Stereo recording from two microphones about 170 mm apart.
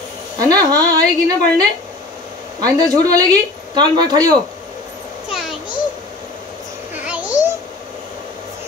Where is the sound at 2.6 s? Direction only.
20° right (ahead or behind).